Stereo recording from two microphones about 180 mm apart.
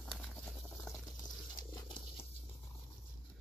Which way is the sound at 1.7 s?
25° left (ahead or behind).